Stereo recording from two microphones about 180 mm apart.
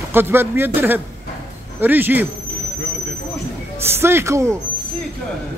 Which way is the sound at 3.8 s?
15° right (ahead or behind).